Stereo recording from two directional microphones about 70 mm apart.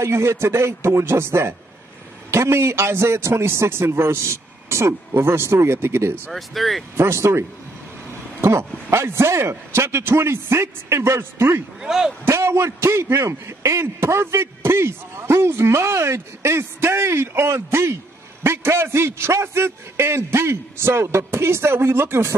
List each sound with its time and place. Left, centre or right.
0.0 s a man's voice: right
6.3 s speech: centre
7.0 s a man's voice: right
11.8 s speech: centre
12.3 s a man's voice: right